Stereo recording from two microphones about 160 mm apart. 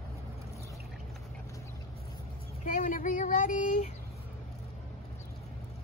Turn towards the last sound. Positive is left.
turn(degrees=55)  # may be behind; listen again after turning